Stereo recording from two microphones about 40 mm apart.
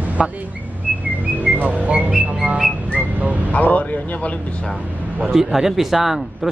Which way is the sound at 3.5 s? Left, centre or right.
Left.